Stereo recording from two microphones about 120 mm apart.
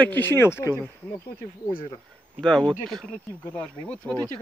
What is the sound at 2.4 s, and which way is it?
Speech, 5° left (ahead or behind).